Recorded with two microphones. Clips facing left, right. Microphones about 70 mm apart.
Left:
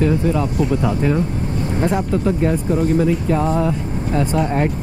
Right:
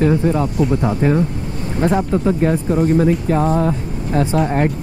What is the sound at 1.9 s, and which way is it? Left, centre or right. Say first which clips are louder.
Speech: right 4 dB; centre.